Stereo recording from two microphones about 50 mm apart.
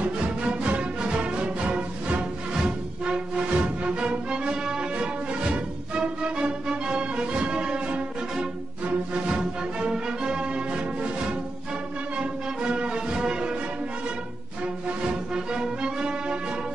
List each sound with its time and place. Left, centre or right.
0.0 s music: right
12.2 s music: centre
15.0 s music: centre